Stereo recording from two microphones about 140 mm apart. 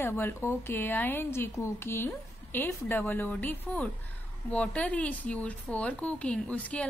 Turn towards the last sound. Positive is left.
turn(degrees=10)  # may be behind; listen again after turning